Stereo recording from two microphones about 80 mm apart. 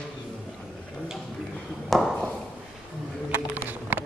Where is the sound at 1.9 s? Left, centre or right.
Centre.